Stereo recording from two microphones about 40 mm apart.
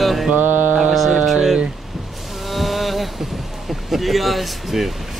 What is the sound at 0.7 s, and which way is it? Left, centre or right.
Music, centre.